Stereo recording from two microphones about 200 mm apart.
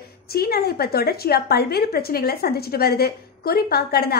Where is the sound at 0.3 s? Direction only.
50° left (ahead or behind).